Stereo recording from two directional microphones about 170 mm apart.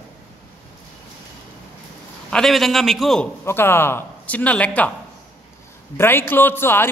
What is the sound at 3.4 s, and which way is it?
Speech, 15° left (ahead or behind).